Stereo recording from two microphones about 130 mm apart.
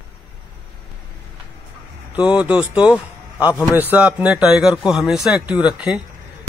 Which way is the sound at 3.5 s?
25° left (ahead or behind).